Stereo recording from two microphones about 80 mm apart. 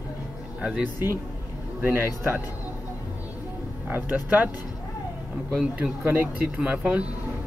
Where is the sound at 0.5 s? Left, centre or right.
Centre.